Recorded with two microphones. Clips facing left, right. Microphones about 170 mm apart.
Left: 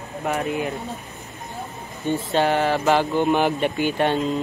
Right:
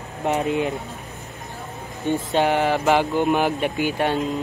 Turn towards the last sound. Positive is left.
turn(degrees=-5)  # may be behind; listen again after turning